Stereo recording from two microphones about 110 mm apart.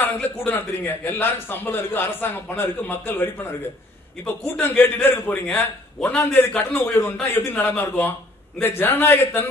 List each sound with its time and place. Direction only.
0.5 s a man's voice: 15° left (ahead or behind)